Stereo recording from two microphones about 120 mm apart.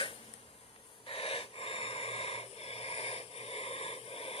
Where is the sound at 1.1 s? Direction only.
55° left (ahead or behind).